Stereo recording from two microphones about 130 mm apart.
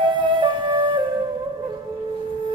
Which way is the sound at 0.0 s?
40° right (ahead or behind).